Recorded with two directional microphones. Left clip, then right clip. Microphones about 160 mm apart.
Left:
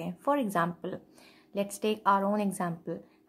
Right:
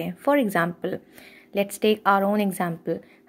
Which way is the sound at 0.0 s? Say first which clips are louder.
Right 7 dB; 20° right (ahead or behind).